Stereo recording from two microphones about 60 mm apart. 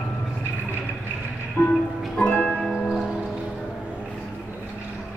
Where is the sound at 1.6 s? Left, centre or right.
Left.